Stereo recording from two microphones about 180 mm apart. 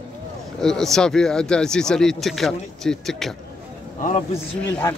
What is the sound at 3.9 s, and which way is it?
Speech, 40° left (ahead or behind).